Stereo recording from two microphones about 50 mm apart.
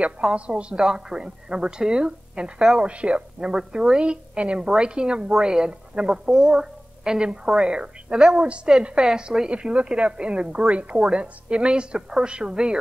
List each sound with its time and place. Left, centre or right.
0.0 s a woman's voice: centre